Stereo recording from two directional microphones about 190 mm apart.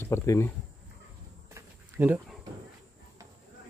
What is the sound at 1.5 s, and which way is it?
Insect, 10° right (ahead or behind).